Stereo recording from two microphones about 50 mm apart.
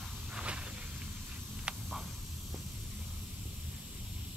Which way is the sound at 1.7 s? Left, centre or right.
Right.